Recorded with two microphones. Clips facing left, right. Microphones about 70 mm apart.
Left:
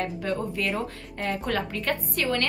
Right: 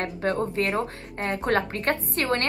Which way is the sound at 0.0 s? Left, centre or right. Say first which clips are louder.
Right 3 dB; right.